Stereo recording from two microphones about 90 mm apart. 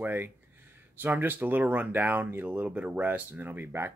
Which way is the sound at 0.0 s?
20° right (ahead or behind).